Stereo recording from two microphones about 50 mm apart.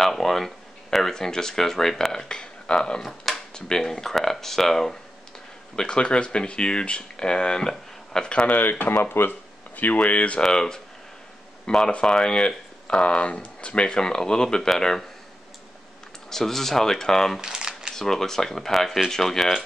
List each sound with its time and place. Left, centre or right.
0.0 s speech: centre
3.0 s speech: centre
5.8 s speech: centre
7.7 s a sound: centre
8.5 s speech: left
9.8 s speech: left
10.4 s speech: centre
16.3 s speech: centre
17.4 s crumpling: centre
17.9 s speech: centre